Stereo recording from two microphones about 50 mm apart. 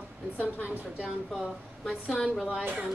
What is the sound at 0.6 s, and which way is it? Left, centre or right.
Speech, right.